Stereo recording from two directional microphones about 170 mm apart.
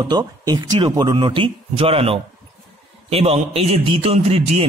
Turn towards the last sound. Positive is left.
turn(degrees=-35)  # may be behind; listen again after turning